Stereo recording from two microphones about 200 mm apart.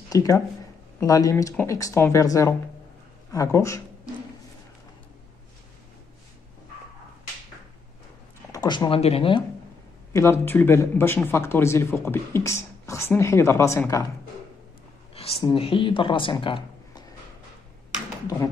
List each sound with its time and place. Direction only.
0.1 s speech: 15° left (ahead or behind)
8.5 s speech: 20° left (ahead or behind)
10.1 s speech: 15° left (ahead or behind)
15.1 s a woman's voice: 30° left (ahead or behind)
18.3 s speech: 15° left (ahead or behind)